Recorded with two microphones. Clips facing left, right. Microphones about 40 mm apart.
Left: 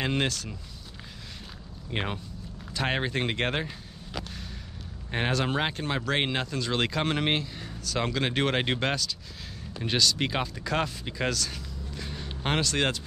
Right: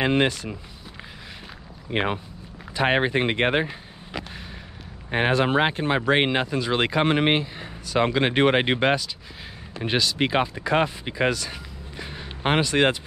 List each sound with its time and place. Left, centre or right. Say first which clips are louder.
0.0 s speech: right 7 dB; right
1.9 s speech: right 7 dB; right